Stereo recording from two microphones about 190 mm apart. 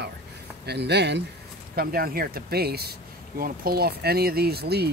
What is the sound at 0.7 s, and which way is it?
Speech, 60° right (ahead or behind).